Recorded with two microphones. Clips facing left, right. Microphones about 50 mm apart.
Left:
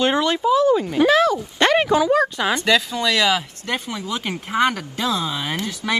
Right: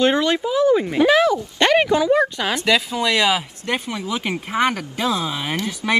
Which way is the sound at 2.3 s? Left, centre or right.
Centre.